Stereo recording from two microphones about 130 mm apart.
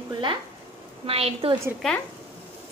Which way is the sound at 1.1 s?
50° right (ahead or behind).